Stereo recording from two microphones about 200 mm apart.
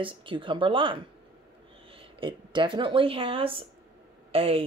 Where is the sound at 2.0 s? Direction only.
25° right (ahead or behind).